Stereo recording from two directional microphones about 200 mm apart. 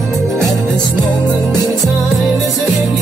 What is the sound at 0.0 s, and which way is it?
Music, centre (ahead or behind).